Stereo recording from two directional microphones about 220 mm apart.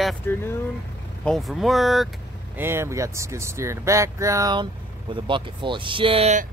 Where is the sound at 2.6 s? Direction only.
10° right (ahead or behind); by 6.4 s 30° right (ahead or behind).